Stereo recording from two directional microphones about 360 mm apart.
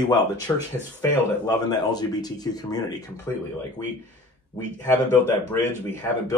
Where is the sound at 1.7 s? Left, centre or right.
Centre.